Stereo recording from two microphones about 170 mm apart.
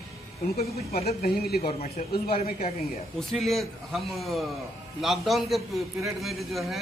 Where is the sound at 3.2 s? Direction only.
Centre (ahead or behind).